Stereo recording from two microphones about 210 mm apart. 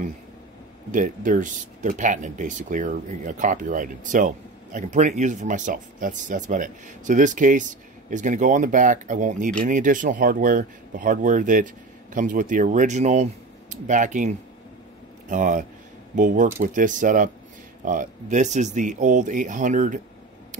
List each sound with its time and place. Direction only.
0.9 s speech: 40° right (ahead or behind)